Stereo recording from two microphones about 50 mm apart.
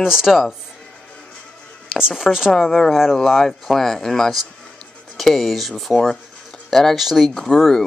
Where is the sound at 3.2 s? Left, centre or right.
Centre.